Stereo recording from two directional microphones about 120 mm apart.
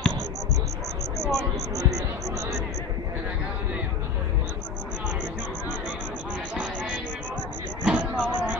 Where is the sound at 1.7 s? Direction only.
30° right (ahead or behind).